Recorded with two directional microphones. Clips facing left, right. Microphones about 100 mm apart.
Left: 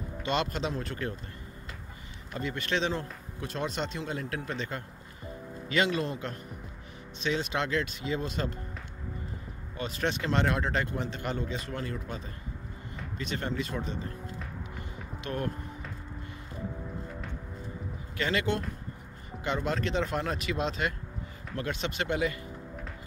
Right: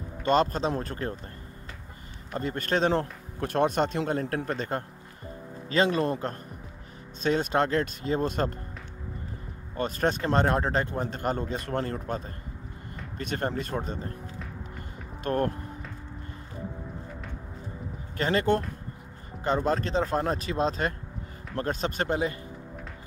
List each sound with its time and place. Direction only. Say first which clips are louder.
0.2 s speech: right 7 dB; 40° right (ahead or behind)
2.3 s speech: right 4 dB; 45° right (ahead or behind)
5.7 s speech: right 4 dB; 35° right (ahead or behind)
9.8 s speech: right 5 dB; 45° right (ahead or behind)
15.2 s speech: right 7 dB; 45° right (ahead or behind)
18.1 s speech: right 5 dB; 40° right (ahead or behind)